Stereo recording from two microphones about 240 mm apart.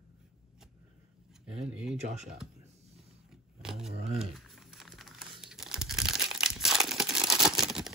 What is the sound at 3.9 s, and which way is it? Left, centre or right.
Speech, right.